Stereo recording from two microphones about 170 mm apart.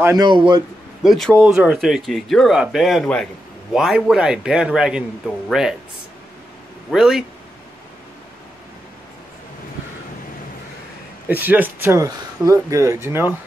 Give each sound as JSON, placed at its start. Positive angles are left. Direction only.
{"t": 0.0, "sound": "a man's voice", "side_deg": -20}
{"t": 1.0, "sound": "speech", "side_deg": 0}
{"t": 6.9, "sound": "speech", "side_deg": -5}
{"t": 11.2, "sound": "speech", "side_deg": -10}